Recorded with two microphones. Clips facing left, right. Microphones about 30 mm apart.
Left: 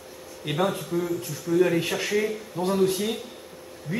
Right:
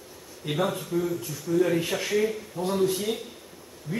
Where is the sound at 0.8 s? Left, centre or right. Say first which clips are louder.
Left 1 dB; centre.